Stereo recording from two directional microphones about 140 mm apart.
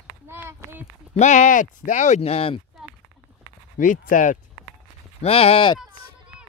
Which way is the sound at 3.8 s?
70° left (ahead or behind).